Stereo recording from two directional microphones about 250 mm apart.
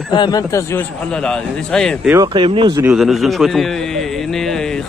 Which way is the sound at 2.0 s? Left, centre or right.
Centre.